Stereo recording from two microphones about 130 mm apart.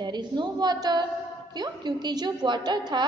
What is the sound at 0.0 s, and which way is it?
A woman's voice, 35° right (ahead or behind).